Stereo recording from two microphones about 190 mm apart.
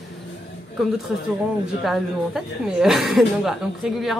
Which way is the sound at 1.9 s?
Centre (ahead or behind).